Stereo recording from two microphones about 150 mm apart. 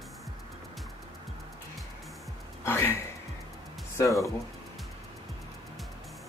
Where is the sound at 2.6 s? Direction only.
15° left (ahead or behind).